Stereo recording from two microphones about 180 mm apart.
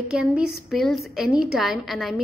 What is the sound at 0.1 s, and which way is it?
A woman's voice, 5° right (ahead or behind).